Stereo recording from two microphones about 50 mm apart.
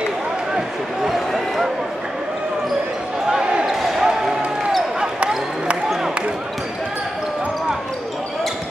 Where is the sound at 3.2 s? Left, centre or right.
Centre.